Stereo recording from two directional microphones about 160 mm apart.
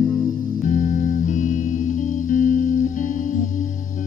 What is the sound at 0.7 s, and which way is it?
Music, 55° left (ahead or behind).